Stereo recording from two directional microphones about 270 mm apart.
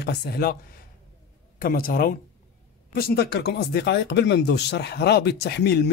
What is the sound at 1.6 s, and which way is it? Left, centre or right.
Speech, left.